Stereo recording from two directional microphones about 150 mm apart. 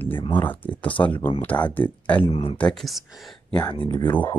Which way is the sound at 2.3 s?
35° left (ahead or behind).